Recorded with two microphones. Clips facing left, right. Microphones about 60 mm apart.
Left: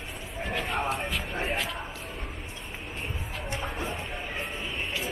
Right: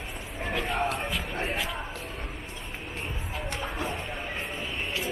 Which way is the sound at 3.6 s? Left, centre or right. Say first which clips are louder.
Right 1 dB; centre.